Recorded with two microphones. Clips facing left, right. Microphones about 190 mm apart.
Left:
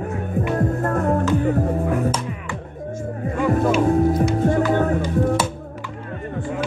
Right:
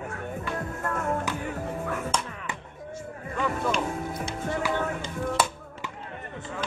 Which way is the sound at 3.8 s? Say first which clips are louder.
Left 14 dB; 40° left (ahead or behind).